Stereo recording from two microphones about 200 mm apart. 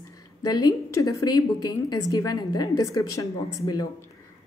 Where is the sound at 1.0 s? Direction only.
15° left (ahead or behind).